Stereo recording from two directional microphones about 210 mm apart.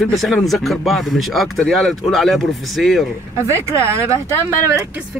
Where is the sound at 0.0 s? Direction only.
Centre (ahead or behind).